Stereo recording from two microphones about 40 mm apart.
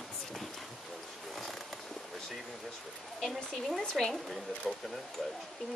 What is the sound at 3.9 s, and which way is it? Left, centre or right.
Speech, centre.